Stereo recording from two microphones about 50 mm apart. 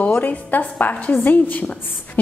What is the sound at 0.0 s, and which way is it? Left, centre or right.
A woman's voice, left.